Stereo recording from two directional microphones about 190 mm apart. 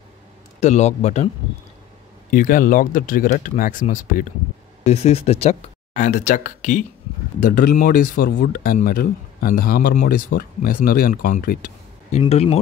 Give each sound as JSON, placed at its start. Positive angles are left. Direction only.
{"t": 0.6, "sound": "speech", "side_deg": 35}
{"t": 2.3, "sound": "speech", "side_deg": 45}
{"t": 4.8, "sound": "speech", "side_deg": 35}
{"t": 12.1, "sound": "speech", "side_deg": 35}